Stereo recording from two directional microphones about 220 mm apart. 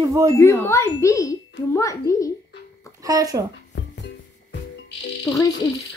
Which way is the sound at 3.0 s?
15° right (ahead or behind).